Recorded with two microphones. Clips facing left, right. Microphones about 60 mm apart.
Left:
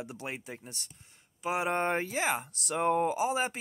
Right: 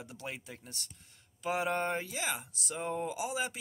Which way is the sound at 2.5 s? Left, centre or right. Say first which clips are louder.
Left 8 dB; left.